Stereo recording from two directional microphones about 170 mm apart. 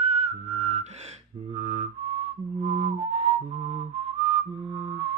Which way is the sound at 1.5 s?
40° right (ahead or behind).